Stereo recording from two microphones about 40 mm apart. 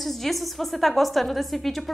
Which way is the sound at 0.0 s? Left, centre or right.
Centre.